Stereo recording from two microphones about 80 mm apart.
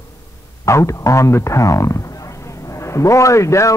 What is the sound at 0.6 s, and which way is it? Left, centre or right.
A man's voice, left.